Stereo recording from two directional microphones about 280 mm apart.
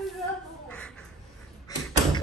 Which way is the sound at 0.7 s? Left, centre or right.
Centre.